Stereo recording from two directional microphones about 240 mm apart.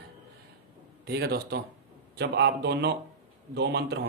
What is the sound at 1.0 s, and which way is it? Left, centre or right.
Speech, right.